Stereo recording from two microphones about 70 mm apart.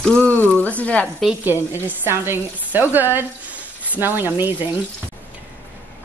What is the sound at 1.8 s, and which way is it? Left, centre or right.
Speech, right.